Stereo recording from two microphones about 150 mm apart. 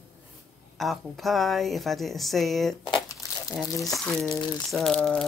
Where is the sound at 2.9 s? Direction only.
20° left (ahead or behind).